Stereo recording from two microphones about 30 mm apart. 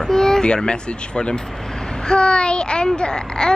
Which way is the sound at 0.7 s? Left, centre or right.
Left.